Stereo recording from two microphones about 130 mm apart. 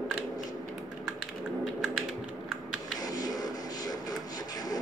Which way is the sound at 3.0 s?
30° left (ahead or behind).